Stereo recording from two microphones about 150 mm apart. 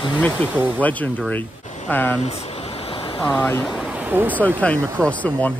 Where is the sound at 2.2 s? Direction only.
40° left (ahead or behind).